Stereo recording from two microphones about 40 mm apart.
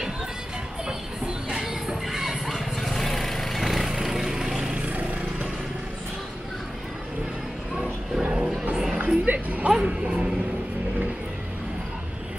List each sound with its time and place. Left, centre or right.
0.8 s a sound: centre
1.7 s music: centre
2.5 s lawn mower: centre
4.7 s vehicle: right
8.2 s a sound: right
9.7 s dog: right